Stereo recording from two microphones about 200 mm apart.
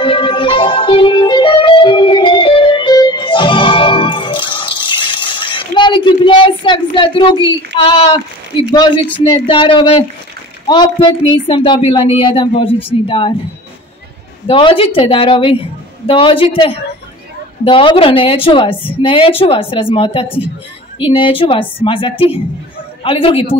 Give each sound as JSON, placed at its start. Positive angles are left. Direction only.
{"t": 0.0, "sound": "music", "side_deg": 25}
{"t": 9.2, "sound": "speech", "side_deg": 25}
{"t": 12.6, "sound": "speech", "side_deg": 10}
{"t": 14.5, "sound": "speech", "side_deg": 25}